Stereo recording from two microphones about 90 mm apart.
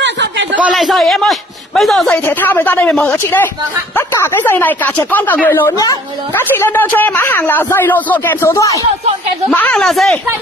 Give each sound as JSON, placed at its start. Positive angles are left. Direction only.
{"t": 0.7, "sound": "a man's voice", "side_deg": 0}
{"t": 2.2, "sound": "a man's voice", "side_deg": 25}
{"t": 5.7, "sound": "a woman's voice", "side_deg": 45}
{"t": 6.3, "sound": "a man's voice", "side_deg": 25}
{"t": 8.5, "sound": "speech", "side_deg": 40}
{"t": 9.5, "sound": "a woman's voice", "side_deg": 15}
{"t": 9.8, "sound": "a man's voice", "side_deg": 0}